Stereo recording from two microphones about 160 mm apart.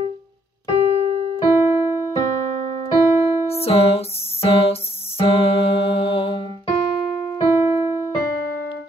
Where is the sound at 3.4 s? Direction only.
40° left (ahead or behind).